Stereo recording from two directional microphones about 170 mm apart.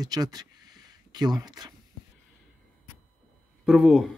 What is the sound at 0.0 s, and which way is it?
Speech, 20° right (ahead or behind).